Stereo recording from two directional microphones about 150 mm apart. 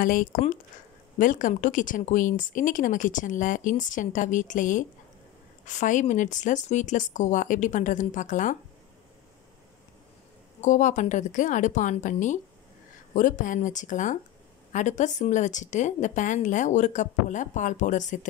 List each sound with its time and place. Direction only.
0.0 s speech: 65° left (ahead or behind)
10.6 s a woman's voice: 55° left (ahead or behind)